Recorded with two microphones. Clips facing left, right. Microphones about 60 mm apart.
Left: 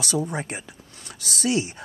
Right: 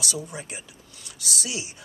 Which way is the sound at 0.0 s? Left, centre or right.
Left.